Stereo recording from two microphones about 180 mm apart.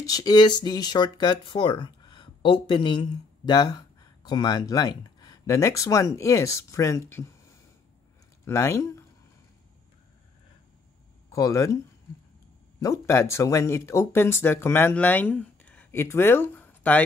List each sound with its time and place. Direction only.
0.0 s speech: 20° left (ahead or behind)
8.5 s speech: 15° left (ahead or behind)
11.3 s speech: 15° left (ahead or behind)
12.8 s speech: 15° left (ahead or behind)